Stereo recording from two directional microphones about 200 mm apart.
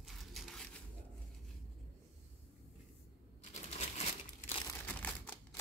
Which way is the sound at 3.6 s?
35° left (ahead or behind).